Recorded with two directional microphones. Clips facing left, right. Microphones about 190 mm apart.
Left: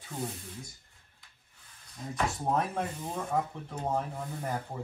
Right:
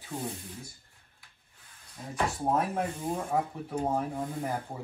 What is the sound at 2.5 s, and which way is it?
Speech, 10° right (ahead or behind).